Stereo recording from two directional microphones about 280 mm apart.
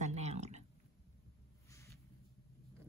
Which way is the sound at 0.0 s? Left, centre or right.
Right.